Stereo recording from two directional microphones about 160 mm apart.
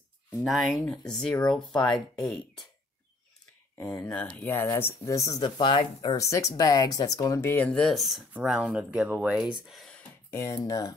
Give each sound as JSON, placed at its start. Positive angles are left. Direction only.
{"t": 0.4, "sound": "speech", "side_deg": 0}
{"t": 4.1, "sound": "speech", "side_deg": 10}
{"t": 6.1, "sound": "speech", "side_deg": 20}
{"t": 10.3, "sound": "speech", "side_deg": 20}